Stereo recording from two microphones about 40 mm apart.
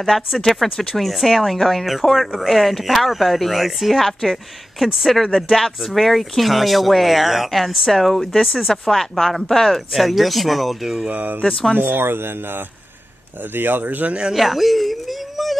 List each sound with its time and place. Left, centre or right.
0.0 s speech: centre
11.1 s speech: right
11.7 s speech: right
14.3 s speech: centre